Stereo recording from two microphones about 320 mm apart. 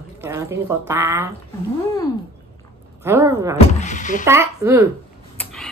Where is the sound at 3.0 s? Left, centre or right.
Centre.